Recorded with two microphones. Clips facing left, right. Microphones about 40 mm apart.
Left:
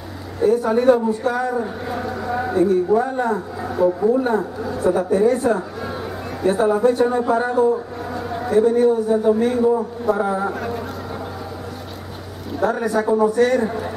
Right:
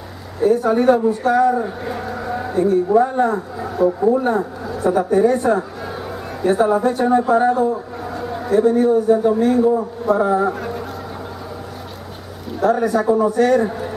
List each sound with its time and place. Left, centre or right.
0.4 s a man's voice: centre
12.5 s a man's voice: centre